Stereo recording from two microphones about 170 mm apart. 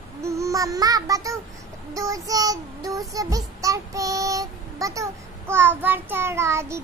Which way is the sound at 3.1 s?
20° right (ahead or behind).